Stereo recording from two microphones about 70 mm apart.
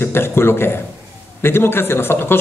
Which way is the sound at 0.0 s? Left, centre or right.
Left.